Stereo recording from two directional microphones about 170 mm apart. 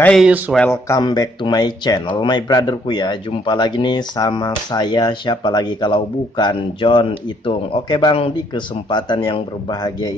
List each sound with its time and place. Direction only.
0.0 s speech: 5° left (ahead or behind)
0.7 s speech: 20° left (ahead or behind)